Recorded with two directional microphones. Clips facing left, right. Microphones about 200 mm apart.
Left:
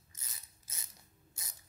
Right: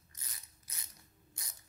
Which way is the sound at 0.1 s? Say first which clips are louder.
Even; 25° left (ahead or behind).